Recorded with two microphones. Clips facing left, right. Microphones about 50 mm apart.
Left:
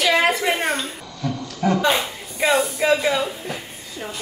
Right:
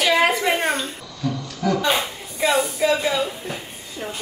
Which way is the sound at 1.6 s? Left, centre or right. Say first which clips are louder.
Left 1 dB; left.